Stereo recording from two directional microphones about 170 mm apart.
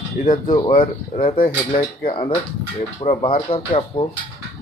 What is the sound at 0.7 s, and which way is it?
Speech, 35° left (ahead or behind).